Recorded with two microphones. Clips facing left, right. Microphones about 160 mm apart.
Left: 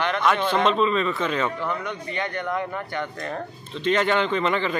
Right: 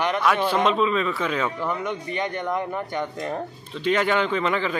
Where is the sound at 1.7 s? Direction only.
15° right (ahead or behind).